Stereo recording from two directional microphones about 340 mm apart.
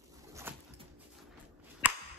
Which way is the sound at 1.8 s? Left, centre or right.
Centre.